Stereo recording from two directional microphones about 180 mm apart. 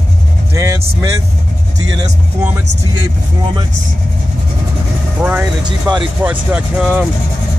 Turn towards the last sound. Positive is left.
turn(degrees=-5)  # may be behind; listen again after turning